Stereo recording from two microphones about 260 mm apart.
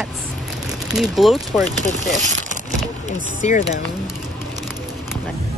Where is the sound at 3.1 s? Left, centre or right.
Left.